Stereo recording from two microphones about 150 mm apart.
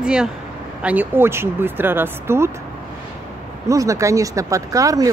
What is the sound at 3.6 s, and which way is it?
Speech, 20° right (ahead or behind).